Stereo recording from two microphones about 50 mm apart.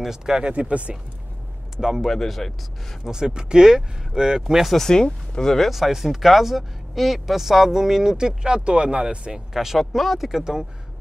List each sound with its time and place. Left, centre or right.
0.0 s speech: centre
0.5 s speech: right
1.8 s speech: centre
2.0 s speech: centre
3.1 s speech: centre
4.7 s speech: centre
5.7 s speech: centre
9.5 s speech: centre